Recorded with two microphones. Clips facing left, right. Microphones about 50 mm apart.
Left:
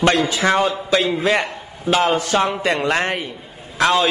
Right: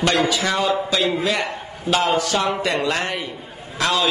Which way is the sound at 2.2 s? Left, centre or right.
Left.